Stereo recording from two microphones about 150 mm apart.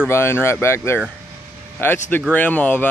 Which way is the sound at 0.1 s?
15° left (ahead or behind).